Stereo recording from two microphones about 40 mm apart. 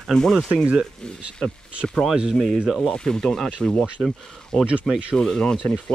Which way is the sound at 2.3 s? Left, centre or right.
Centre.